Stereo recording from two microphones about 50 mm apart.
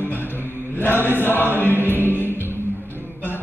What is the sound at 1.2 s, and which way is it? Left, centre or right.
Choir, left.